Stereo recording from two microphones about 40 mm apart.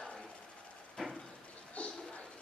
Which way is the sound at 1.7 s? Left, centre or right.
Left.